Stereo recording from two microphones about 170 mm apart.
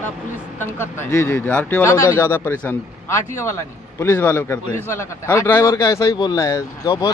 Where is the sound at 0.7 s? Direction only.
15° left (ahead or behind).